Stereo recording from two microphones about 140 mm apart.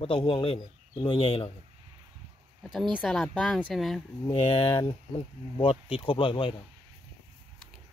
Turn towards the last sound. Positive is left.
turn(degrees=35)  # may be behind; listen again after turning